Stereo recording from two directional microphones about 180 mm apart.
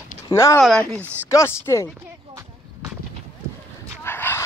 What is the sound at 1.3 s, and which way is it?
Speech, 15° left (ahead or behind).